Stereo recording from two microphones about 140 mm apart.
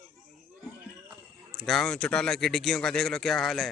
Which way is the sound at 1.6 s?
5° left (ahead or behind).